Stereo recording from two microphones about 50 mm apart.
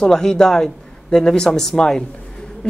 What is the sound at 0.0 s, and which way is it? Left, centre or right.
Speech, centre.